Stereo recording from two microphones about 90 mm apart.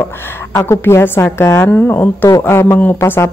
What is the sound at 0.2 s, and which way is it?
A woman's voice, 25° left (ahead or behind).